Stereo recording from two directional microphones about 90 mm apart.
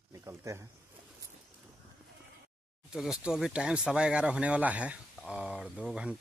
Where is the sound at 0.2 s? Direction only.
35° right (ahead or behind).